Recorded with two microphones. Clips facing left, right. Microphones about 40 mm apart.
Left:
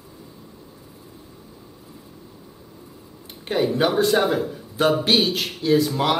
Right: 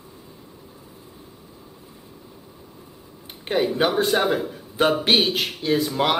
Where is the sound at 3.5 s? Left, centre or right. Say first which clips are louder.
Even; centre.